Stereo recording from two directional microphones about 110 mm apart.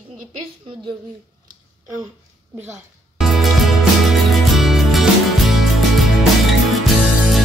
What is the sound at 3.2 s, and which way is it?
Music, centre (ahead or behind).